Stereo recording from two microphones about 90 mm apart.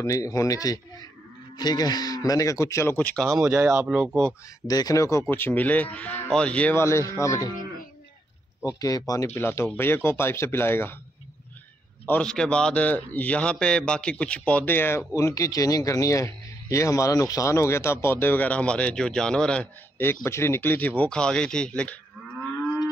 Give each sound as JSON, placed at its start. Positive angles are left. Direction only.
{"t": 0.0, "sound": "speech", "side_deg": 35}
{"t": 3.0, "sound": "speech", "side_deg": 15}
{"t": 3.4, "sound": "speech", "side_deg": -30}
{"t": 3.8, "sound": "speech", "side_deg": -15}
{"t": 4.6, "sound": "speech", "side_deg": 45}
{"t": 5.3, "sound": "speech", "side_deg": 20}
{"t": 6.7, "sound": "speech", "side_deg": 30}
{"t": 8.6, "sound": "speech", "side_deg": 45}
{"t": 9.3, "sound": "a man's voice", "side_deg": 25}
{"t": 12.1, "sound": "a man's voice", "side_deg": 10}
{"t": 20.0, "sound": "speech", "side_deg": 30}